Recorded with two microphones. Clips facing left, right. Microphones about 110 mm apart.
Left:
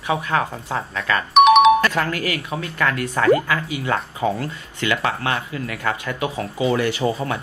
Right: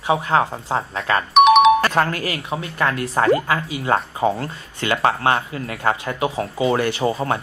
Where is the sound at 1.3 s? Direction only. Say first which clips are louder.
Even; centre (ahead or behind).